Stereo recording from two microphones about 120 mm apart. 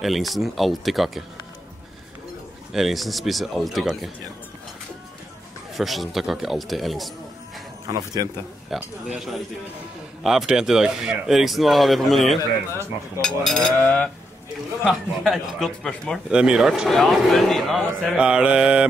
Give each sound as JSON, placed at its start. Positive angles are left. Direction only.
{"t": 0.0, "sound": "a man's voice", "side_deg": 0}
{"t": 2.7, "sound": "a man's voice", "side_deg": 0}
{"t": 5.8, "sound": "a man's voice", "side_deg": 0}
{"t": 7.8, "sound": "speech", "side_deg": -35}
{"t": 8.6, "sound": "a man's voice", "side_deg": -5}
{"t": 13.8, "sound": "a sound", "side_deg": 10}
{"t": 14.9, "sound": "a man's voice", "side_deg": 0}